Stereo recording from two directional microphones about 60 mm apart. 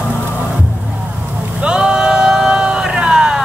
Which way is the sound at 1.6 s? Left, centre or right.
Centre.